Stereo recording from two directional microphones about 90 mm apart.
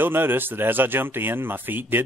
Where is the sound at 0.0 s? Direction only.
25° right (ahead or behind).